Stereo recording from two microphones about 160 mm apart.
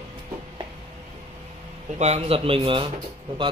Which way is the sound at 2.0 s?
40° right (ahead or behind).